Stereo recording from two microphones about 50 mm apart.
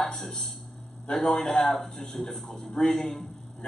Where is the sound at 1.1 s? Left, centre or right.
Centre.